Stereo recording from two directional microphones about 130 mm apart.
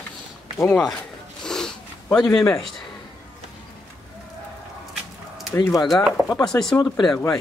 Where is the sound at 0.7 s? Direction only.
5° left (ahead or behind).